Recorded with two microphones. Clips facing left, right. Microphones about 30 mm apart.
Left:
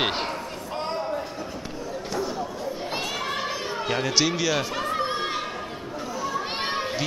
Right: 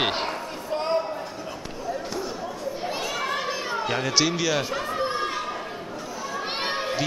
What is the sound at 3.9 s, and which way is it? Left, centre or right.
Speech, centre.